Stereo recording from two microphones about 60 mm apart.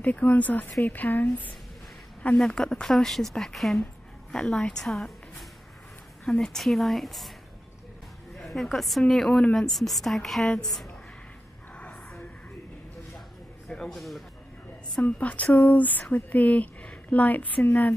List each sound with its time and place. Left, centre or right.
0.0 s speech: left
2.3 s speech: centre
6.2 s a woman's voice: centre
8.4 s a woman's voice: centre
11.7 s a sound: centre
13.7 s a man's voice: centre
15.0 s speech: left